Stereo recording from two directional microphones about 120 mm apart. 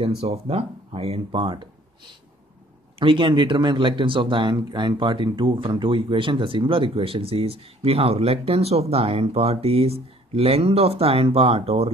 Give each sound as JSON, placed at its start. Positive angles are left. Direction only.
{"t": 0.2, "sound": "speech", "side_deg": -55}
{"t": 3.0, "sound": "speech", "side_deg": -45}